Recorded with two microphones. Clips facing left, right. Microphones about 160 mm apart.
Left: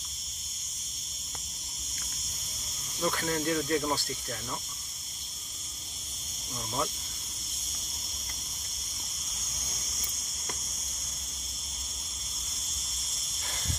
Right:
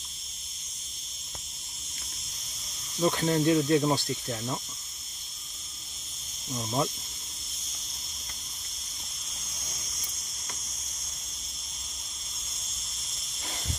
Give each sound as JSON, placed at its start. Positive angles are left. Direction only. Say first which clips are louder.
{"t": 3.0, "sound": "speech", "louder": "right 5 dB", "side_deg": -20}